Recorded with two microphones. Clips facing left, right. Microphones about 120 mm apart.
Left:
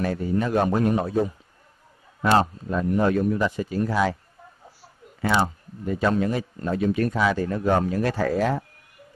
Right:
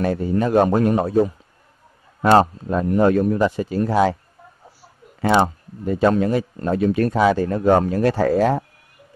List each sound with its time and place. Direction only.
0.0 s a man's voice: 30° right (ahead or behind); by 1.3 s 50° right (ahead or behind)
2.3 s a man's voice: 50° right (ahead or behind)
3.3 s speech: 35° right (ahead or behind)
5.9 s speech: 30° right (ahead or behind)
6.1 s a man's voice: 50° right (ahead or behind)
7.2 s speech: 35° right (ahead or behind)
7.4 s a man's voice: 45° right (ahead or behind)
8.1 s speech: 30° right (ahead or behind)